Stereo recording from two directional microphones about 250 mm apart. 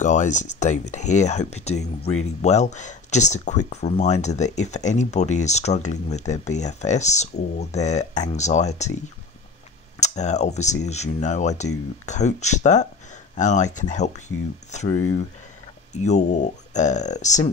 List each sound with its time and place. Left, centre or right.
0.0 s speech: left
9.9 s speech: left
15.9 s speech: left